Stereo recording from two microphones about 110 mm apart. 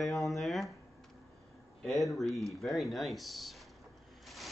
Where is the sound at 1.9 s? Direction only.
Centre (ahead or behind).